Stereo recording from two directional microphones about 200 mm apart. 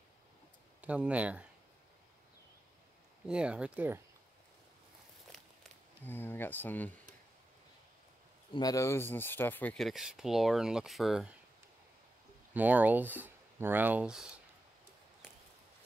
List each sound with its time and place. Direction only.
0.7 s speech: 5° right (ahead or behind)
3.3 s speech: 5° right (ahead or behind)
6.0 s speech: 10° left (ahead or behind)
8.5 s speech: 15° left (ahead or behind); by 11.3 s centre (ahead or behind)
12.5 s speech: 10° right (ahead or behind)